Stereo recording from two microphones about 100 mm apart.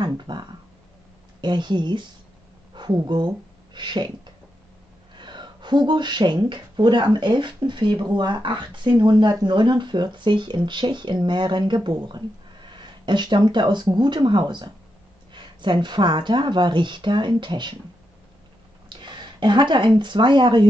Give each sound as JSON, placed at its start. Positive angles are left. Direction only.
{"t": 0.0, "sound": "speech", "side_deg": -50}
{"t": 5.1, "sound": "speech", "side_deg": -50}
{"t": 18.9, "sound": "speech", "side_deg": -50}